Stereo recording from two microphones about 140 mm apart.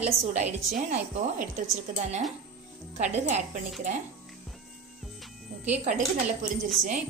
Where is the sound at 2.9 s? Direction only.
60° right (ahead or behind).